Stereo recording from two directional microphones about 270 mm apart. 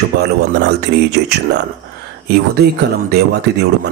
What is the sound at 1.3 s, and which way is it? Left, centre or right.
Speech, right.